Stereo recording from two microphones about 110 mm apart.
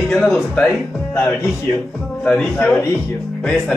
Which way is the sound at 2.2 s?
Centre (ahead or behind).